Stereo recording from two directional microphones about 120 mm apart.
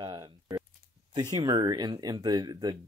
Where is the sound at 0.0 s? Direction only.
35° right (ahead or behind).